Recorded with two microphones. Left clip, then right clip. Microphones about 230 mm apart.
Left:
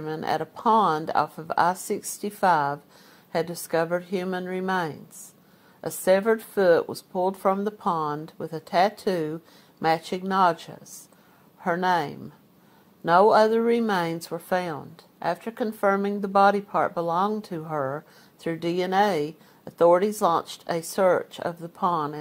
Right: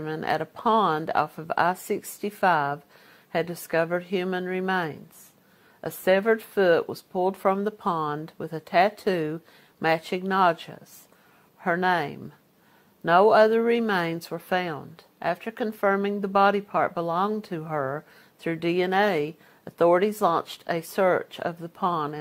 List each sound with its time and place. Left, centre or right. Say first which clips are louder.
0.0 s speech: even; right